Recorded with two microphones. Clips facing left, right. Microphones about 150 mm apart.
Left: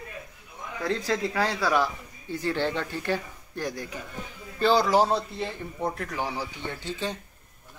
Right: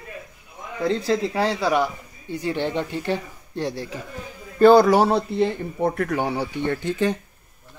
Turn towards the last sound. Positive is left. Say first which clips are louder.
# right 10 dB
turn(degrees=-55)  # may be behind; listen again after turning